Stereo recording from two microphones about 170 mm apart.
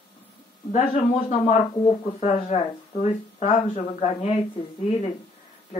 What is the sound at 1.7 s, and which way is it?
Speech, 30° left (ahead or behind).